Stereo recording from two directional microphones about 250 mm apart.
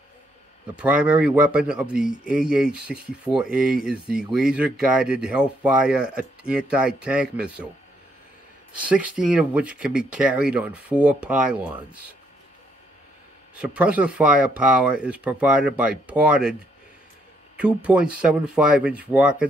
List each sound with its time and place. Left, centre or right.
0.7 s speech: centre
8.8 s speech: centre
13.6 s speech: centre
17.6 s speech: centre